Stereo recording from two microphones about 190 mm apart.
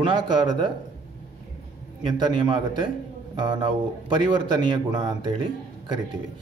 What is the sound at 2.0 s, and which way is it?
Speech, 25° right (ahead or behind).